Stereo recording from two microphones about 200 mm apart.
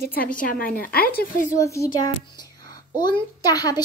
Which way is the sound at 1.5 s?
15° left (ahead or behind).